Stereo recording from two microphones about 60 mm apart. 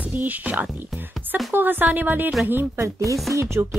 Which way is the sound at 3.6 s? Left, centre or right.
Right.